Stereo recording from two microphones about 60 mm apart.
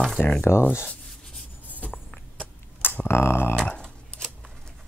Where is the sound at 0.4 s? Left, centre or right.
Left.